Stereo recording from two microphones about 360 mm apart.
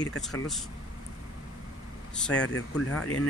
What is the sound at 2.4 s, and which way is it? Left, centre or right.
Speech, left.